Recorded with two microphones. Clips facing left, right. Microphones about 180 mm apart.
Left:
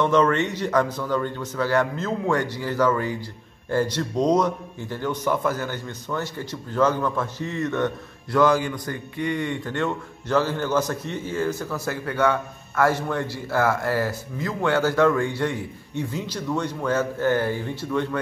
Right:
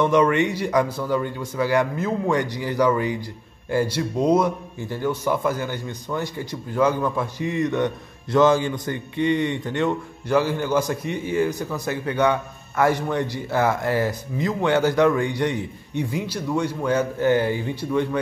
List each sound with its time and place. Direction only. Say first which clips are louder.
0.0 s a man's voice: right 2 dB; 10° right (ahead or behind)